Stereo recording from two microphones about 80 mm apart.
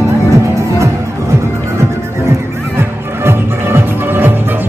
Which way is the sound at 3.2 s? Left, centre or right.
Right.